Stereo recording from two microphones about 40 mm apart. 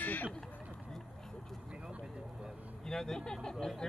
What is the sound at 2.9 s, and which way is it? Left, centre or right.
Speech, centre.